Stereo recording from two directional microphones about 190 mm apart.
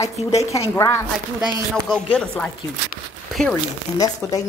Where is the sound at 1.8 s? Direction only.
5° left (ahead or behind).